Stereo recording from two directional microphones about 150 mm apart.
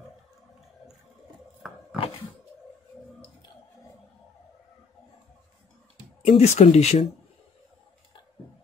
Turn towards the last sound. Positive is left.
turn(degrees=45)  # may be behind; listen again after turning